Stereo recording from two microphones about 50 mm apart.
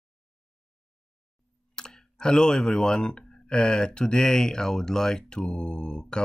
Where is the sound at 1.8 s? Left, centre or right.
Centre.